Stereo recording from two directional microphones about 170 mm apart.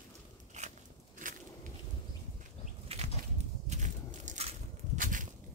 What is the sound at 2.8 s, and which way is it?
Bird flight, 35° right (ahead or behind).